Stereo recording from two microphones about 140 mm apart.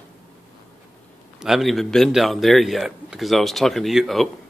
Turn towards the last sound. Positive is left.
turn(degrees=0)  # may be behind; listen again after turning